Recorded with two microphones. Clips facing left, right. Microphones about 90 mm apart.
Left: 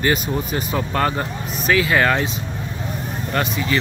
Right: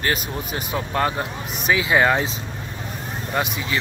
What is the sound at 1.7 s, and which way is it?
Speech, 15° right (ahead or behind).